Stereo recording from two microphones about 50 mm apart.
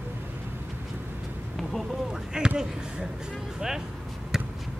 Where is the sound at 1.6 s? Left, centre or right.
Centre.